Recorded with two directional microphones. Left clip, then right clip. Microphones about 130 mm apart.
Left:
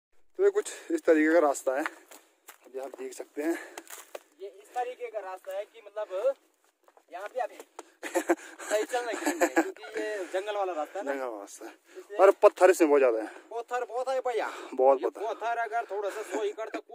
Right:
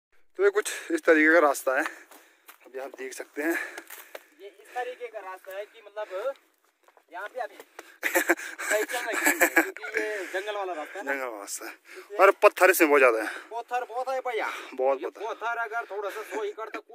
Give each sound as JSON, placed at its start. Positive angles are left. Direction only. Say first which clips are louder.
{"t": 0.4, "sound": "speech", "louder": "right 2 dB", "side_deg": 10}
{"t": 2.9, "sound": "speech", "louder": "right 2 dB", "side_deg": 10}
{"t": 7.7, "sound": "speech", "louder": "right 10 dB", "side_deg": 15}
{"t": 10.1, "sound": "speech", "louder": "even", "side_deg": 35}
{"t": 11.3, "sound": "speech", "louder": "right 4 dB", "side_deg": 20}
{"t": 13.5, "sound": "speech", "louder": "right 2 dB", "side_deg": 45}
{"t": 14.5, "sound": "speech", "louder": "left 6 dB", "side_deg": 70}
{"t": 15.0, "sound": "speech", "louder": "left 2 dB", "side_deg": 40}